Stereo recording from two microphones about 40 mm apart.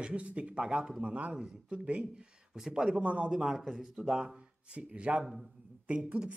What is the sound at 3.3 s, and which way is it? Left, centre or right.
Speech, centre.